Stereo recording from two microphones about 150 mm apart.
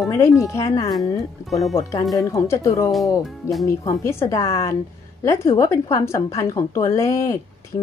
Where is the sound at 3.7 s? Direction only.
20° left (ahead or behind).